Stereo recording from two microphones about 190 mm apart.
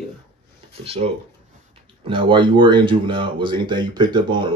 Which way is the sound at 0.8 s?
30° right (ahead or behind).